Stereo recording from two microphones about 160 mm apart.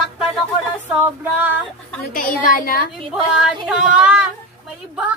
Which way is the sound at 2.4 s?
65° left (ahead or behind).